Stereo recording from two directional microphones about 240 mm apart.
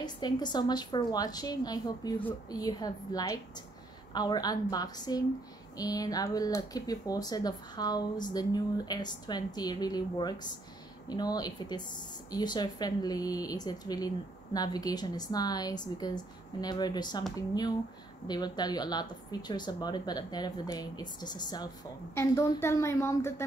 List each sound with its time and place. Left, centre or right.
0.0 s a woman's voice: centre